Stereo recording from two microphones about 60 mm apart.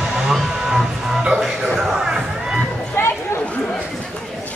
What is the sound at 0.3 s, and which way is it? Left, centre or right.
Music, centre.